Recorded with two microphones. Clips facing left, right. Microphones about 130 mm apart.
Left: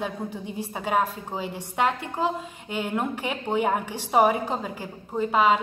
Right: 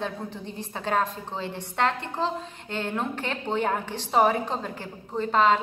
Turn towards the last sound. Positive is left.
turn(degrees=10)  # may be behind; listen again after turning